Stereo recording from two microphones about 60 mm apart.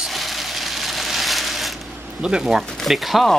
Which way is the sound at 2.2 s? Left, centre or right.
Centre.